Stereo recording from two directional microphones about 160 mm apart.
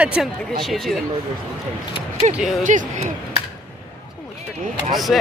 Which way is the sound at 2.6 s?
50° right (ahead or behind).